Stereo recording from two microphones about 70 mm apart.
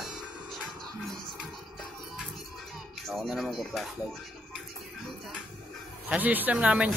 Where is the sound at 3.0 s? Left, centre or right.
Centre.